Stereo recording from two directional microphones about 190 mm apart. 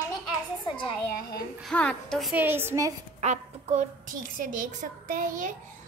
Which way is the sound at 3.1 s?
40° right (ahead or behind).